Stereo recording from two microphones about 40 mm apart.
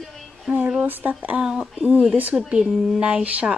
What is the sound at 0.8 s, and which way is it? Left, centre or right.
Speech, right.